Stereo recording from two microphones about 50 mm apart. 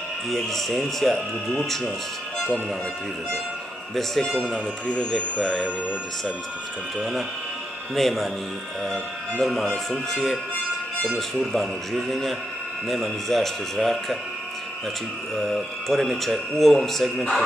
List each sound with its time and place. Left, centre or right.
0.3 s speech: centre
4.8 s speech: left
5.4 s speech: centre
7.0 s speech: centre
9.4 s speech: centre
11.5 s speech: centre
15.3 s speech: centre